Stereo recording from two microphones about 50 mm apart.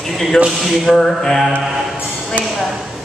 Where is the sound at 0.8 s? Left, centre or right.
Centre.